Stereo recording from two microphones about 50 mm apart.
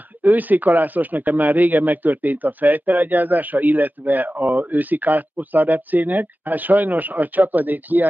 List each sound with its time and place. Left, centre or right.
0.2 s speech: right